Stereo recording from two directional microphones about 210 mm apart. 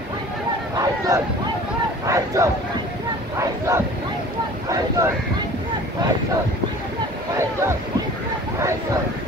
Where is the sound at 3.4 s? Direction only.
15° right (ahead or behind).